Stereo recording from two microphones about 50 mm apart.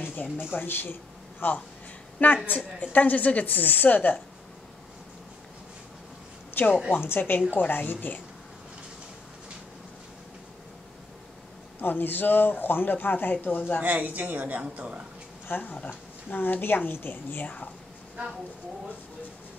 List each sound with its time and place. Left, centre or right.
0.2 s a woman's voice: left
6.6 s a woman's voice: left
11.8 s a woman's voice: left
13.8 s a woman's voice: right
15.4 s speech: left
15.7 s a woman's voice: left